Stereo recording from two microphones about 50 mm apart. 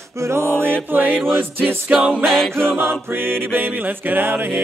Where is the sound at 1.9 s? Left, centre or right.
Centre.